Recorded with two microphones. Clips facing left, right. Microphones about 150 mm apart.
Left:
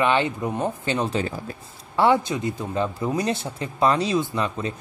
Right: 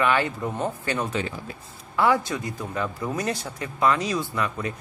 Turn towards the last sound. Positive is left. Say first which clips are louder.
# left 2 dB
turn(degrees=25)  # may be behind; listen again after turning